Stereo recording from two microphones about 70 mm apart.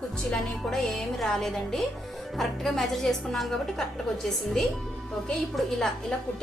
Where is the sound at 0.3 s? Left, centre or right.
Centre.